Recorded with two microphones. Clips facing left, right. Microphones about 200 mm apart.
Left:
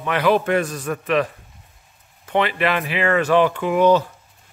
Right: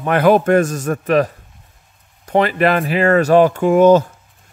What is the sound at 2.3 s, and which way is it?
Speech, 40° right (ahead or behind).